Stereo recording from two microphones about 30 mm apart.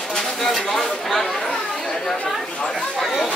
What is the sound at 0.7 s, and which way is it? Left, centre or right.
Speech, centre.